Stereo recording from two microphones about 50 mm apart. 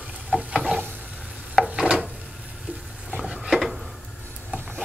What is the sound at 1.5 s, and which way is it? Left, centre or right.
Rub, centre.